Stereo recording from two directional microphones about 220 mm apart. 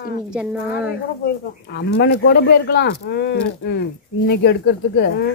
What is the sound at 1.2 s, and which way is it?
Speech, 45° left (ahead or behind).